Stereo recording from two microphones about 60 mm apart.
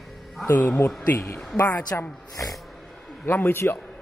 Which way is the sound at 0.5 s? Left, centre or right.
Left.